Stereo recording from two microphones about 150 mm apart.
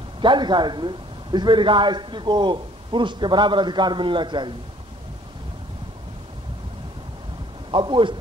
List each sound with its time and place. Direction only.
0.2 s a man's voice: 30° right (ahead or behind)
7.7 s a man's voice: 30° right (ahead or behind)